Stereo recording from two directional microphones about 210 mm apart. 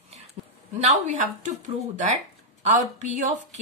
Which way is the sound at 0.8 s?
35° right (ahead or behind).